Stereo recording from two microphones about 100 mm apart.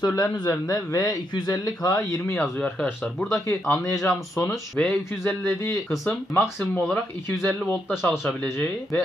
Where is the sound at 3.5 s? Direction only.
30° left (ahead or behind).